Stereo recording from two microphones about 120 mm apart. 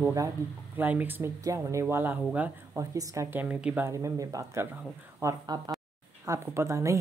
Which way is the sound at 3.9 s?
25° right (ahead or behind).